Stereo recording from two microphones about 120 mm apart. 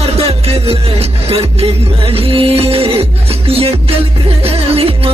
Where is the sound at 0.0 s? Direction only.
55° right (ahead or behind).